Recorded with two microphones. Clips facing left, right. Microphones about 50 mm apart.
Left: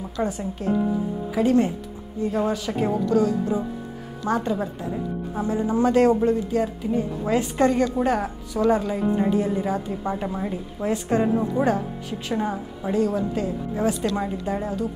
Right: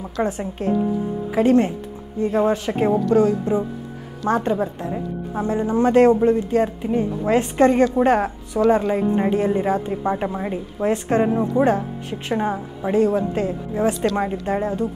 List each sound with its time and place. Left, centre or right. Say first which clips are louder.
0.2 s a woman's voice: right 3 dB; right